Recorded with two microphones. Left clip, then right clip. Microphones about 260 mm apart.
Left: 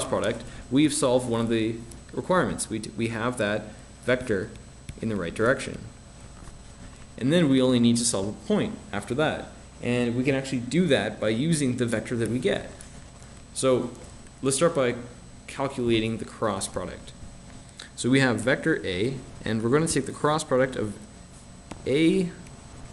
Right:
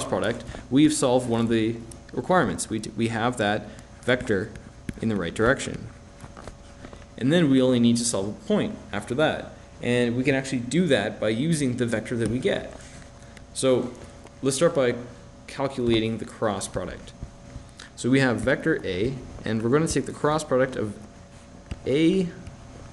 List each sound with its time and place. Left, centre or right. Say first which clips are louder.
0.0 s speech: right 1 dB; centre
7.2 s speech: right 1 dB; centre